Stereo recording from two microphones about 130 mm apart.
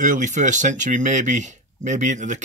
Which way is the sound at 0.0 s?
75° right (ahead or behind).